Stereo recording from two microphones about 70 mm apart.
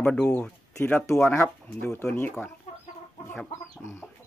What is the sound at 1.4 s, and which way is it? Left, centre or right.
Speech, left.